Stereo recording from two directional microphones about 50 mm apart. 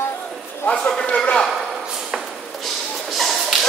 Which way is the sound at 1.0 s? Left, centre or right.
Left.